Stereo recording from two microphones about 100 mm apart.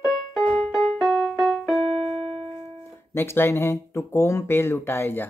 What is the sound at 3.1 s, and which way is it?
A man's voice, 25° left (ahead or behind).